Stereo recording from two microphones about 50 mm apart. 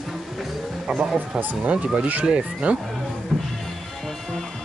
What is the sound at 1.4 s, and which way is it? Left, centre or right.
Speech, right.